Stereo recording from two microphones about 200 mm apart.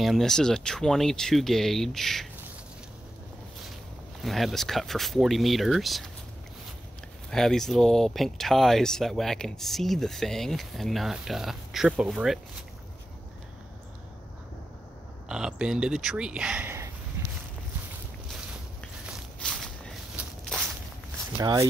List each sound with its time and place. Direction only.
0.0 s speech: centre (ahead or behind)
4.2 s speech: centre (ahead or behind)
7.2 s speech: centre (ahead or behind)
15.2 s speech: 5° right (ahead or behind)
17.2 s a sound: 10° right (ahead or behind)
19.0 s walk: centre (ahead or behind)
21.4 s speech: 20° right (ahead or behind)